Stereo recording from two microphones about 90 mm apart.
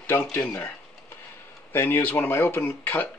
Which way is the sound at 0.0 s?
25° left (ahead or behind).